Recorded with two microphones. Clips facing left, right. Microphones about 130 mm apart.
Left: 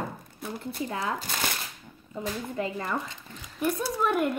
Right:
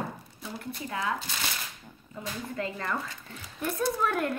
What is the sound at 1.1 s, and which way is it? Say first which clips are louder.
Shuffling cards: left 4 dB; 50° left (ahead or behind).